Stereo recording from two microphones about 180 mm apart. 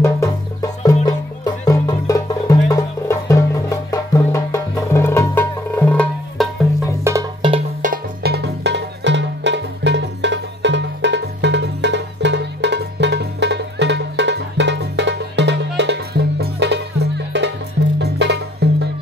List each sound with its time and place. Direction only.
0.0 s music: 15° left (ahead or behind)
7.1 s music: 15° right (ahead or behind)
7.8 s music: 55° right (ahead or behind)